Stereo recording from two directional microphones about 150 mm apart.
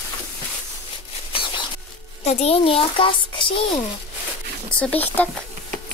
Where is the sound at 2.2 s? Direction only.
45° left (ahead or behind).